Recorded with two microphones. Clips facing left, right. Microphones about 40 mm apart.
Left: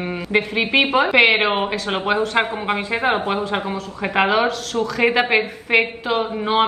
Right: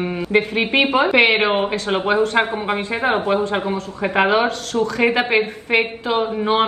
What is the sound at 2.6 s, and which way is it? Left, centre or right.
Speech, left.